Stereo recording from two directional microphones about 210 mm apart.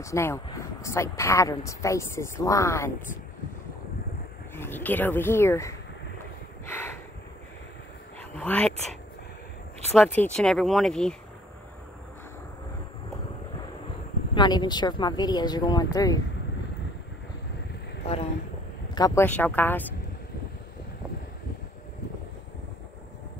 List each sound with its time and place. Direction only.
0.0 s speech: 15° left (ahead or behind)
4.6 s speech: 10° left (ahead or behind)
8.2 s dog: 5° left (ahead or behind)
9.9 s speech: 5° left (ahead or behind)
14.3 s speech: 20° left (ahead or behind)
18.0 s speech: 30° left (ahead or behind)
18.9 s speech: 15° left (ahead or behind)